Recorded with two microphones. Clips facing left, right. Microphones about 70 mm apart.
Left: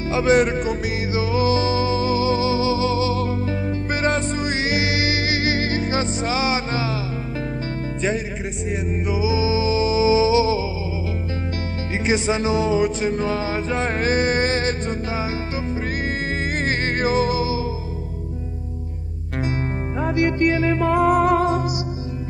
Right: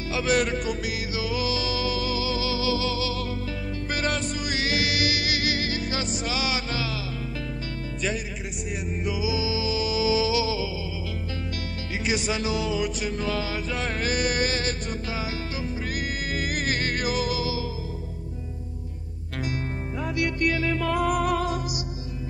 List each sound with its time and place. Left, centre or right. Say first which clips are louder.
0.1 s music: left 7 dB; left
9.0 s music: left 6 dB; left
12.1 s music: left 7 dB; left
20.0 s music: left 7 dB; left